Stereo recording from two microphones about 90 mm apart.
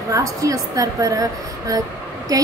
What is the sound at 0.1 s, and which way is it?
A woman's voice, 40° right (ahead or behind).